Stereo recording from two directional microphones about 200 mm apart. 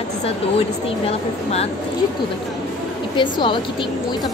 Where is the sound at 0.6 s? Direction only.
30° left (ahead or behind).